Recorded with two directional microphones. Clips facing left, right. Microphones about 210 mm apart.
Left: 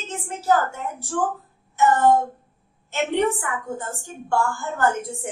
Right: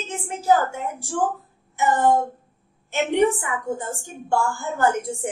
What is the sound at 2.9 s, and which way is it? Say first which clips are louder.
A woman's voice: right 2 dB; 15° right (ahead or behind).